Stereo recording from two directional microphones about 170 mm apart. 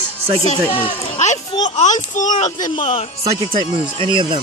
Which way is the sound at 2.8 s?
30° left (ahead or behind).